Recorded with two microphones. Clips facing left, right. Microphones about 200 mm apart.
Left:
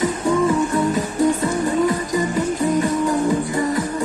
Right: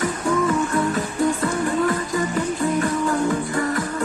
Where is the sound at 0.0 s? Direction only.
20° left (ahead or behind).